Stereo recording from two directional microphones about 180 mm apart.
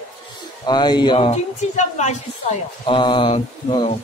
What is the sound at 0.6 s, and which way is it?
A woman's voice, 25° left (ahead or behind).